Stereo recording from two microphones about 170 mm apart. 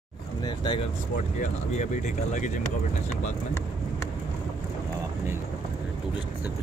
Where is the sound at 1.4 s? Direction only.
45° left (ahead or behind).